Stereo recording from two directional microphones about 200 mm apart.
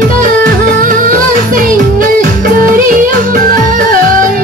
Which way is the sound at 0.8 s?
40° right (ahead or behind).